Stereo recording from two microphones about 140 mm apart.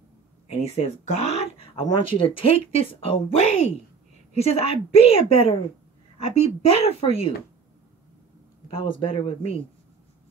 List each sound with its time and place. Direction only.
0.5 s speech: 45° left (ahead or behind)
8.6 s speech: 40° left (ahead or behind)